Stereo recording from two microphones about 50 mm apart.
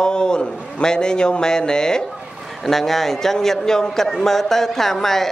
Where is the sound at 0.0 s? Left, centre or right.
Centre.